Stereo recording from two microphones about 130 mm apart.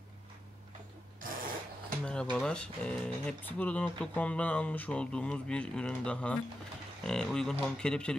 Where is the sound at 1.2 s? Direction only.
90° right.